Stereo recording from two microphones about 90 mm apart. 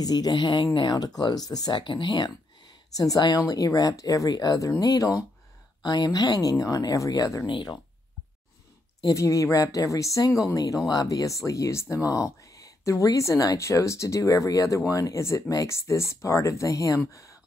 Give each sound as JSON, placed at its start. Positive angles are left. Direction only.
{"t": 0.0, "sound": "speech", "side_deg": 50}
{"t": 2.9, "sound": "speech", "side_deg": 40}
{"t": 7.4, "sound": "speech", "side_deg": 55}
{"t": 9.0, "sound": "speech", "side_deg": 35}